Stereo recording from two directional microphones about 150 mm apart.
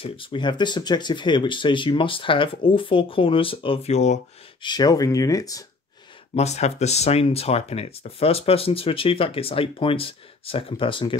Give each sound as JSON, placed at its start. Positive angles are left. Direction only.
{"t": 0.0, "sound": "speech", "side_deg": 35}
{"t": 4.6, "sound": "speech", "side_deg": 30}
{"t": 6.3, "sound": "speech", "side_deg": 45}